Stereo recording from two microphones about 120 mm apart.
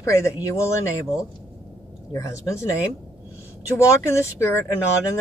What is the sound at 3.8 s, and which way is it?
Speech, 25° left (ahead or behind).